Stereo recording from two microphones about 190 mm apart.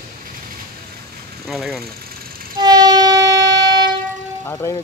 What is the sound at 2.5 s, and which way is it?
Train, 20° right (ahead or behind).